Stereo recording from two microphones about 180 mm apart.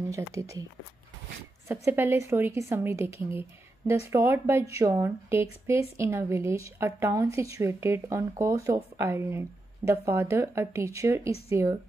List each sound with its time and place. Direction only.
0.1 s speech: 15° right (ahead or behind)
1.7 s speech: 15° right (ahead or behind)